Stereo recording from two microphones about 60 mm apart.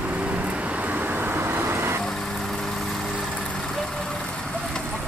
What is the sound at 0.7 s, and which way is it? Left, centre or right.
Vehicle, right.